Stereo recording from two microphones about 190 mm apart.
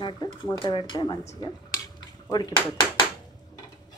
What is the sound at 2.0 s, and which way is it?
Dishes, 20° left (ahead or behind).